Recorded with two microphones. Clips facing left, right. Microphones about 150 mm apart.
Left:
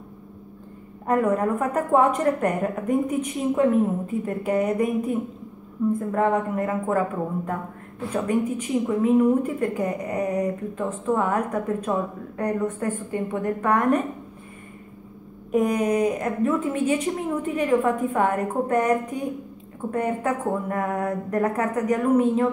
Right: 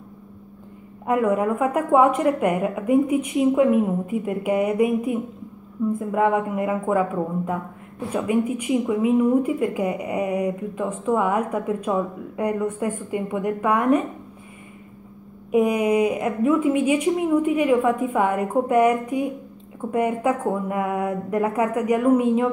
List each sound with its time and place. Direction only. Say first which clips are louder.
1.0 s a woman's voice: right 1 dB; 10° right (ahead or behind)
15.5 s a woman's voice: right 2 dB; 10° right (ahead or behind)